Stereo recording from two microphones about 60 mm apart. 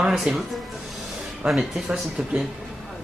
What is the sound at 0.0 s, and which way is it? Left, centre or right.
Music, centre.